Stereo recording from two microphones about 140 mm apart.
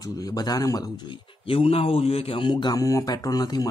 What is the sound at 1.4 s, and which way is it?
A man's voice, 45° left (ahead or behind).